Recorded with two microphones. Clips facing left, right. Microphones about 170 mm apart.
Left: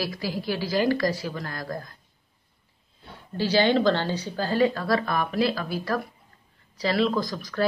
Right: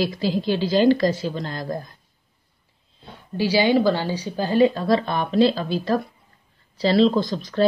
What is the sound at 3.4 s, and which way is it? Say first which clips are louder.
A woman's voice: right 3 dB; 10° right (ahead or behind).